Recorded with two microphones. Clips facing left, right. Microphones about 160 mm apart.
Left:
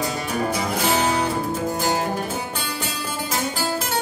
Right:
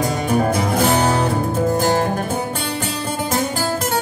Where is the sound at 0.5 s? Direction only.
50° right (ahead or behind).